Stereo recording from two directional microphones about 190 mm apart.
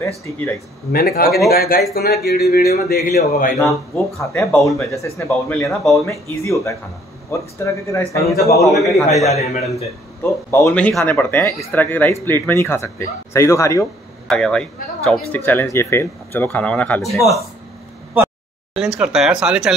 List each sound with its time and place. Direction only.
0.9 s speech: 50° left (ahead or behind)
3.1 s speech: 45° left (ahead or behind)
3.5 s speech: 15° left (ahead or behind)
5.6 s speech: centre (ahead or behind)
6.0 s speech: 15° left (ahead or behind)
8.5 s speech: centre (ahead or behind)
9.3 s a man's voice: 35° left (ahead or behind)
10.5 s speech: 10° left (ahead or behind)
14.2 s speech: 5° left (ahead or behind)
18.8 s speech: 5° right (ahead or behind)